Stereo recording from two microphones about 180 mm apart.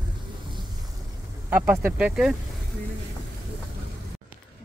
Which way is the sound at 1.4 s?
10° right (ahead or behind).